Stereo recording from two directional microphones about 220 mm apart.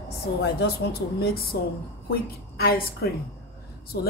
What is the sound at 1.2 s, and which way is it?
A woman's voice, 45° left (ahead or behind).